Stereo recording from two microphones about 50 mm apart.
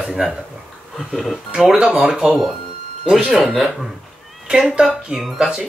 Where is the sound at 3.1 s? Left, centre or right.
Centre.